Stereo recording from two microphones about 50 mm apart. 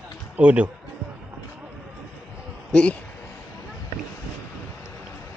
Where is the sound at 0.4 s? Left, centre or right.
Right.